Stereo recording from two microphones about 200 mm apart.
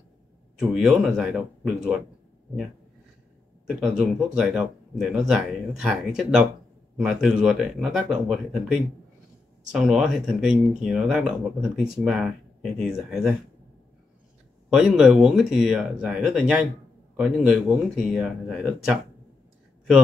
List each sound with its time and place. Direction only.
0.6 s speech: centre (ahead or behind)
3.6 s speech: 5° right (ahead or behind)
9.7 s speech: 5° right (ahead or behind)
14.7 s speech: 5° right (ahead or behind)